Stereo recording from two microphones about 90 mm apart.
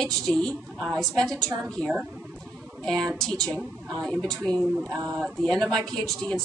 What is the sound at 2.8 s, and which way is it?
A woman's voice, 5° left (ahead or behind).